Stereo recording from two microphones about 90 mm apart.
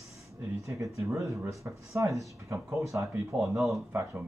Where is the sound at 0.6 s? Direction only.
35° right (ahead or behind).